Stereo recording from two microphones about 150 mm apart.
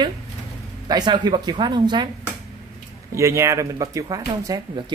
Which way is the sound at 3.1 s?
20° right (ahead or behind).